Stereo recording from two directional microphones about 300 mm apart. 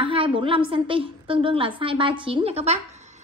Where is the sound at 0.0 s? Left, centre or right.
Centre.